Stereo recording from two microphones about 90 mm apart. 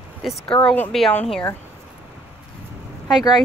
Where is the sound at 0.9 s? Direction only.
5° left (ahead or behind).